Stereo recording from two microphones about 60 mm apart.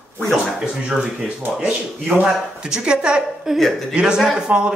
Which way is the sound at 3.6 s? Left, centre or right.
Centre.